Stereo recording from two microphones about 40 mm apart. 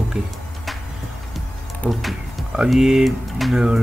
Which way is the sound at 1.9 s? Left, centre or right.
Centre.